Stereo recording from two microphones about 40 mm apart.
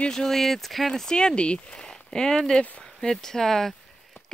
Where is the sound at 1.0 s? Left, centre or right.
Centre.